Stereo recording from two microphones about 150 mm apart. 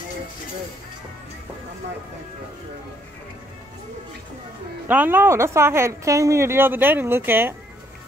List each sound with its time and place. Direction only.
4.8 s speech: 10° right (ahead or behind)